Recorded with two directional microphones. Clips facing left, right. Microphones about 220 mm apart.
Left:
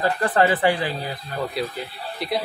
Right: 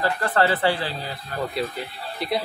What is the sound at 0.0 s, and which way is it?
Speech, 15° left (ahead or behind).